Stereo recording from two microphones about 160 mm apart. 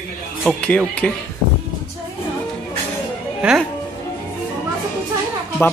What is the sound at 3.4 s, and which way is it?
Speech, 5° right (ahead or behind).